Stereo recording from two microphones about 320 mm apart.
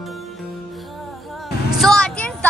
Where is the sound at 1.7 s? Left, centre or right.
Centre.